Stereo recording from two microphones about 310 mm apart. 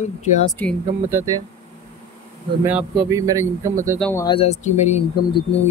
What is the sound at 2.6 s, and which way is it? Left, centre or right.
A man's voice, centre.